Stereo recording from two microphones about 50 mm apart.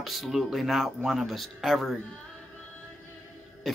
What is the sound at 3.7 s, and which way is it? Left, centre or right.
Cough, centre.